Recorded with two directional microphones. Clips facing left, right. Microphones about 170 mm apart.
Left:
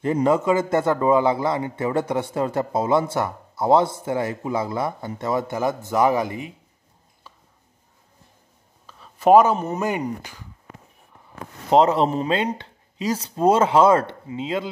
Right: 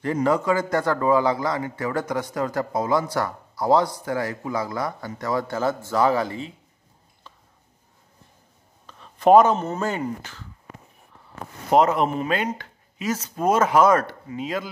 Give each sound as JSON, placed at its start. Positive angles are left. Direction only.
{"t": 0.0, "sound": "a man's voice", "side_deg": 20}
{"t": 8.8, "sound": "speech", "side_deg": 5}
{"t": 11.7, "sound": "a man's voice", "side_deg": 30}